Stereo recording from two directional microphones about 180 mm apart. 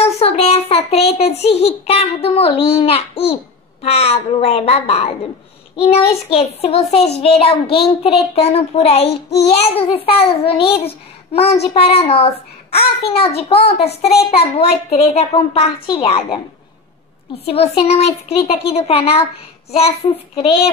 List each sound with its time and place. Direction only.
0.0 s child singing: 35° left (ahead or behind)
3.8 s a child's voice: 35° left (ahead or behind)
17.5 s a child's voice: 35° left (ahead or behind)